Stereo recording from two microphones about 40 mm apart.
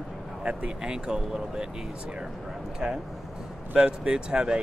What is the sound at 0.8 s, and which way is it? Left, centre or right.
Speech, right.